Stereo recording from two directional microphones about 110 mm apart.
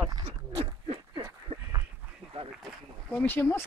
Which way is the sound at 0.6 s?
65° right (ahead or behind).